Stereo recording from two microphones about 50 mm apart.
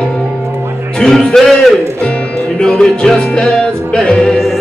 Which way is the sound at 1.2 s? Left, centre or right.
Centre.